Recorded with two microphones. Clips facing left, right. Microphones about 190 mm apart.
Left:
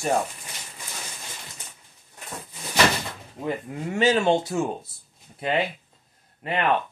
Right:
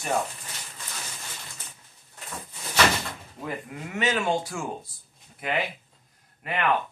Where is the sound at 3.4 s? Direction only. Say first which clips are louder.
Left 6 dB; 30° left (ahead or behind).